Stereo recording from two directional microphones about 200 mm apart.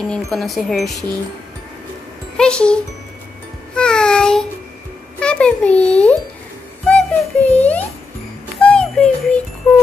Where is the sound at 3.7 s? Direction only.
5° left (ahead or behind).